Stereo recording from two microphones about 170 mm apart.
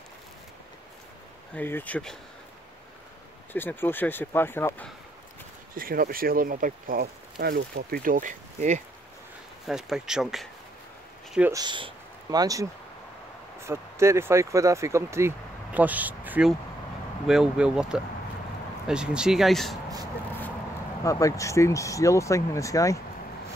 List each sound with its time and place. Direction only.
1.5 s speech: 10° left (ahead or behind)
3.5 s speech: 10° left (ahead or behind)
5.8 s speech: 60° right (ahead or behind)
9.7 s speech: 5° right (ahead or behind)
11.5 s speech: 25° right (ahead or behind)
13.7 s speech: 15° right (ahead or behind); by 19.8 s centre (ahead or behind)
21.0 s speech: 20° left (ahead or behind)